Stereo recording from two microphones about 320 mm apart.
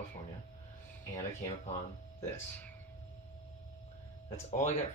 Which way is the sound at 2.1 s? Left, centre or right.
Centre.